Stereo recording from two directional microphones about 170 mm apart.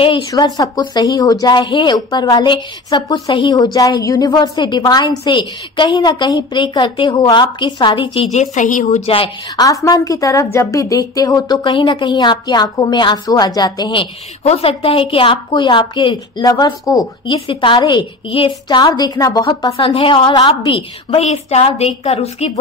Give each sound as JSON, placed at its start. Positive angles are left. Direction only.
{"t": 0.0, "sound": "a woman's voice", "side_deg": 25}
{"t": 9.8, "sound": "a woman's voice", "side_deg": 20}
{"t": 14.4, "sound": "a woman's voice", "side_deg": 35}